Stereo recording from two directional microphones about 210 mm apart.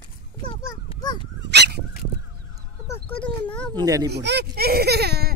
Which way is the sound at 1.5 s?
50° right (ahead or behind).